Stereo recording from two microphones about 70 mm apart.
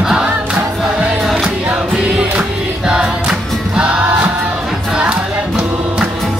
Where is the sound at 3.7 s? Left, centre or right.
Centre.